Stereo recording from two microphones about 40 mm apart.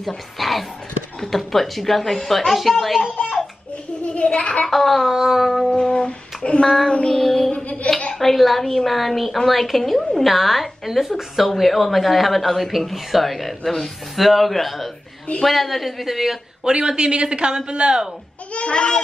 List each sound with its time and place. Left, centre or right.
0.0 s speech: centre
4.0 s a sound: left
4.6 s speech: centre
5.1 s a sound: centre
5.4 s speech: centre
5.8 s a sound: left
7.1 s music: centre
7.5 s music: left
8.2 s speech: centre
16.6 s a man's voice: right
18.5 s speech: left